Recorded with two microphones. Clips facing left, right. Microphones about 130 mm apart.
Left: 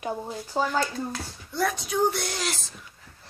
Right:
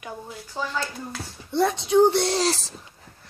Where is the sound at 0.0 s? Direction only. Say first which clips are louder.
Left 5 dB; 30° left (ahead or behind).